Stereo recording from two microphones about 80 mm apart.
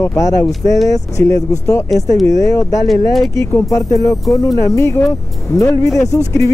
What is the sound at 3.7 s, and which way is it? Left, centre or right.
Speech, left.